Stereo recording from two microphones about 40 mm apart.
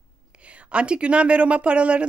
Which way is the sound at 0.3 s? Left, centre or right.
Right.